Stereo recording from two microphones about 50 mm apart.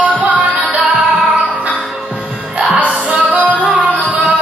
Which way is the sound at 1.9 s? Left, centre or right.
Centre.